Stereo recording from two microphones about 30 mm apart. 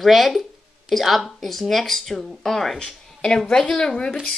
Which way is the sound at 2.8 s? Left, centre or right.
Left.